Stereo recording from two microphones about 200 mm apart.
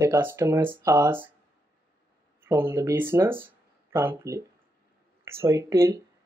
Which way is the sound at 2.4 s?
15° right (ahead or behind).